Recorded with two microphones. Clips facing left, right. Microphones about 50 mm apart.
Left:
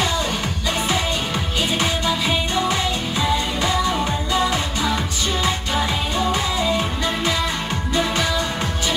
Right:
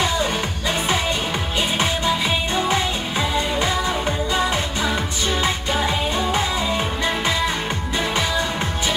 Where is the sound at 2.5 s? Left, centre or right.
Right.